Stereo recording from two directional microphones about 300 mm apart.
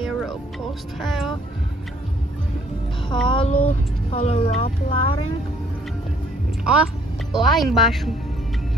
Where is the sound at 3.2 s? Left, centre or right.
Centre.